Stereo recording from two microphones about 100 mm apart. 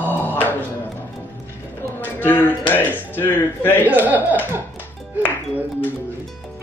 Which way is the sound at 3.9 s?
15° right (ahead or behind).